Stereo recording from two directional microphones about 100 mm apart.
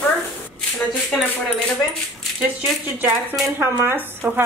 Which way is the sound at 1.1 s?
5° left (ahead or behind).